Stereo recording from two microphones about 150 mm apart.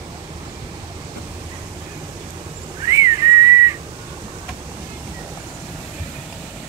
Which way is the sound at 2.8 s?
20° right (ahead or behind).